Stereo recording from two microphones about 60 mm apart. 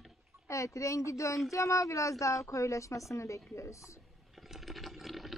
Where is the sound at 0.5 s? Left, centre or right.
Left.